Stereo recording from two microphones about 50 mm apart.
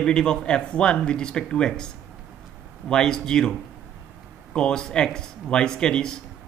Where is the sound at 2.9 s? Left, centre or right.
Centre.